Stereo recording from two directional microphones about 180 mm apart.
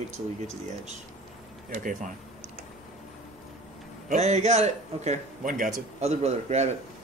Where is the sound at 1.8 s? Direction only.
50° right (ahead or behind).